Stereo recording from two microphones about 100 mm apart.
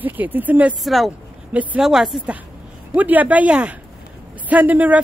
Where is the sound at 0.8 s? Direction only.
Centre (ahead or behind).